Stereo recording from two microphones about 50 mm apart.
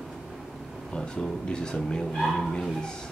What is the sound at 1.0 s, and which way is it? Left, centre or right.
Speech, centre.